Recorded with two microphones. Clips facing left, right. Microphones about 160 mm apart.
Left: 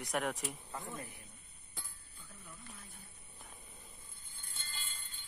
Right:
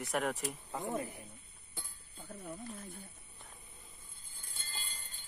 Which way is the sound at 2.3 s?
40° right (ahead or behind).